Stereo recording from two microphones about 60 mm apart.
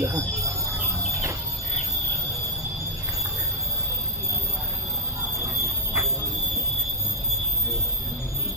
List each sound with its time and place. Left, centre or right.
0.0 s speech: right